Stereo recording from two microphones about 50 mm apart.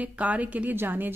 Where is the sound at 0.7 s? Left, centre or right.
Right.